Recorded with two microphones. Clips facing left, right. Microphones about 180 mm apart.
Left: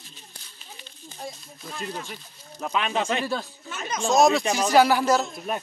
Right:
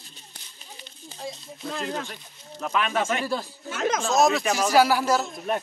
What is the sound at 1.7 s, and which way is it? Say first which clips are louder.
Speech: right 4 dB; 85° right.